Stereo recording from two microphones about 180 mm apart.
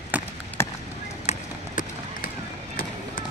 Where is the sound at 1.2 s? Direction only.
45° left (ahead or behind).